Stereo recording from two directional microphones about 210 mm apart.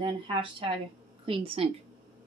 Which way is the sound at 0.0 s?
25° right (ahead or behind).